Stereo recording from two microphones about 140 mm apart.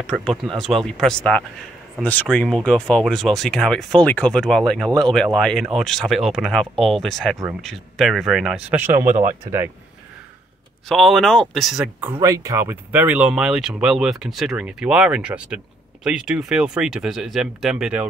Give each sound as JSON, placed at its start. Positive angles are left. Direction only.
{"t": 0.0, "sound": "speech", "side_deg": 0}
{"t": 9.0, "sound": "speech", "side_deg": -70}
{"t": 10.9, "sound": "speech", "side_deg": 0}
{"t": 12.2, "sound": "speech", "side_deg": -25}